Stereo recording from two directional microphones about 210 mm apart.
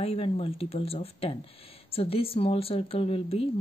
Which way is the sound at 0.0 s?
25° left (ahead or behind).